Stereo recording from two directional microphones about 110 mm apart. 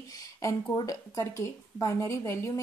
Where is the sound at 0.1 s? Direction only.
30° left (ahead or behind).